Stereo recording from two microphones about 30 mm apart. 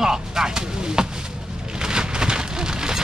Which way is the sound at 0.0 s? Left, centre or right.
Centre.